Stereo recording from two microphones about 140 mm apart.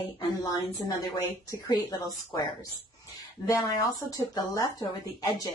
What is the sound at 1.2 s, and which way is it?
Speech, 20° left (ahead or behind).